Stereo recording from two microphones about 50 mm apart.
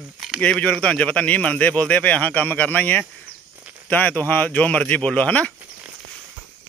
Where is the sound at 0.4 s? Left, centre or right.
Left.